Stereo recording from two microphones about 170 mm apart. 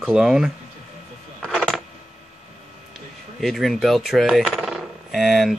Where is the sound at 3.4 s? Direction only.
Centre (ahead or behind).